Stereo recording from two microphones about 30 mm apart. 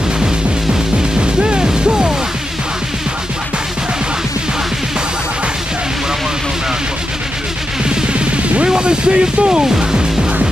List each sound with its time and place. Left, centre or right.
1.2 s music: right
8.1 s music: right
8.6 s speech: right
9.8 s music: right